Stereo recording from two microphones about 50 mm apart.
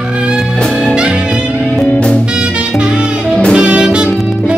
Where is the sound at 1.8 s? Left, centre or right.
Left.